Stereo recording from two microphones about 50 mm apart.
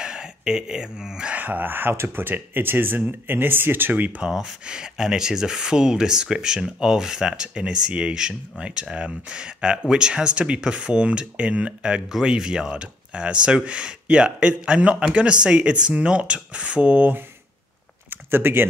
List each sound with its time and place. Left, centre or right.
0.0 s a sound: centre
1.3 s speech: right
4.2 s speech: centre
18.1 s speech: right